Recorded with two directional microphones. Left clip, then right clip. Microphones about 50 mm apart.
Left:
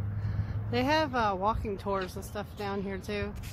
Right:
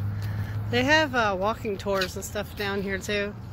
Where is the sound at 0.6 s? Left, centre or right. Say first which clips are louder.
Right 6 dB; left.